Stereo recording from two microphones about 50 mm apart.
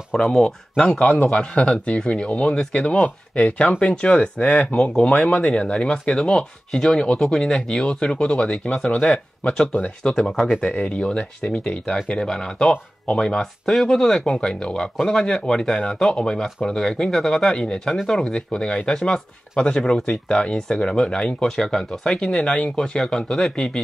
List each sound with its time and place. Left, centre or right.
0.3 s speech: centre
1.0 s a man's voice: left
1.6 s speech: left